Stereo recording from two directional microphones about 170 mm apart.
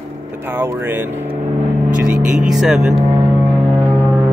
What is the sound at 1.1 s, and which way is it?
Speech, 40° right (ahead or behind).